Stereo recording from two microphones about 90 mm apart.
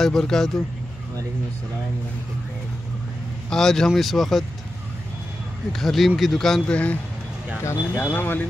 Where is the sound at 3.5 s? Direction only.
5° left (ahead or behind).